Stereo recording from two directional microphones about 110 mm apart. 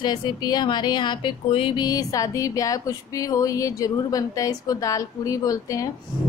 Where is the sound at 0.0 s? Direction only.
40° left (ahead or behind).